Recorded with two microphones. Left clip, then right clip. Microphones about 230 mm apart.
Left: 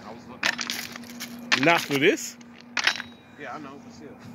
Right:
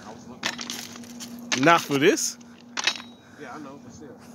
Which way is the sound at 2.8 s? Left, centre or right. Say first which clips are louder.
Left 2 dB; centre.